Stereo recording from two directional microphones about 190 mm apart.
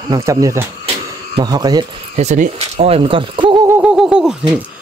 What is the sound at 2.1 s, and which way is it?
Speech, 40° right (ahead or behind).